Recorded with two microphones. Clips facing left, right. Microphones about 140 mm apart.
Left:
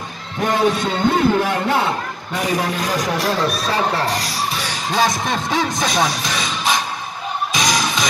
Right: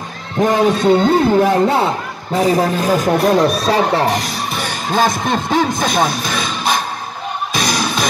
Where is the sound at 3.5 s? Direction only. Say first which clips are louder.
Right 5 dB; 25° right (ahead or behind).